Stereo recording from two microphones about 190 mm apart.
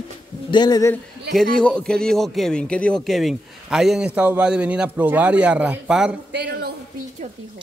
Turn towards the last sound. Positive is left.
turn(degrees=-60)  # may be behind; listen again after turning